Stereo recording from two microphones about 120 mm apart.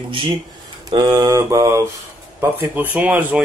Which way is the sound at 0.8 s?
30° right (ahead or behind).